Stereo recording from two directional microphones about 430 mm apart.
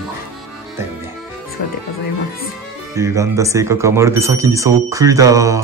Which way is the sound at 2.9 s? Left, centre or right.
Centre.